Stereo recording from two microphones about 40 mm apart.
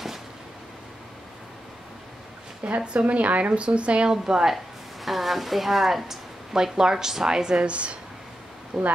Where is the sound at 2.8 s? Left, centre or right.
Right.